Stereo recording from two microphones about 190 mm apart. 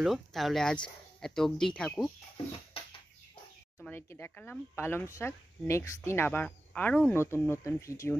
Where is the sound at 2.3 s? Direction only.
30° left (ahead or behind).